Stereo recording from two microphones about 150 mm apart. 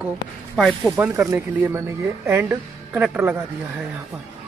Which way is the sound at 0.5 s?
Centre (ahead or behind).